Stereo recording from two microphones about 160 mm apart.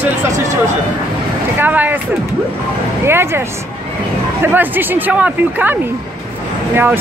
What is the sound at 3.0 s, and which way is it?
Speech, 15° right (ahead or behind).